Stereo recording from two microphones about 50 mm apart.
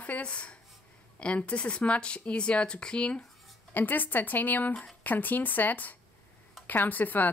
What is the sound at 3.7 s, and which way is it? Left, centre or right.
Speech, left.